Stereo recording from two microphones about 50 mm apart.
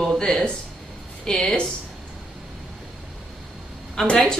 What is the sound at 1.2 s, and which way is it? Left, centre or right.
Speech, centre.